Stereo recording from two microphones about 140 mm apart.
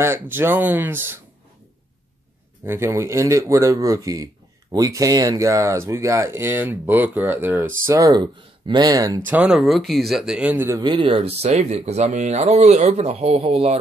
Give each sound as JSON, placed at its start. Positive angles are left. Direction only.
{"t": 0.0, "sound": "speech", "side_deg": -15}
{"t": 2.6, "sound": "speech", "side_deg": -20}
{"t": 9.3, "sound": "speech", "side_deg": -5}
{"t": 10.8, "sound": "speech", "side_deg": -35}